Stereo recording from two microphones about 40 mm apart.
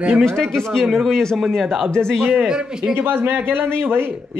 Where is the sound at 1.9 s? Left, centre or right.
Centre.